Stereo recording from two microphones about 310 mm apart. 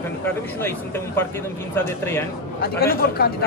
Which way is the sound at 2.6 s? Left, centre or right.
Left.